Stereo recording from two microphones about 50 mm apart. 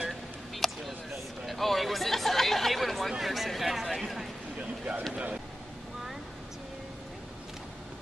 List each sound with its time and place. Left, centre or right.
0.6 s a sound: centre
3.1 s speech: centre
5.1 s speech: right